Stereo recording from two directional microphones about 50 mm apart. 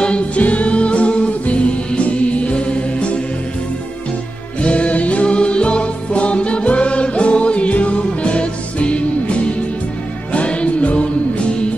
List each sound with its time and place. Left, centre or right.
0.4 s music: left
4.6 s music: left
10.3 s music: left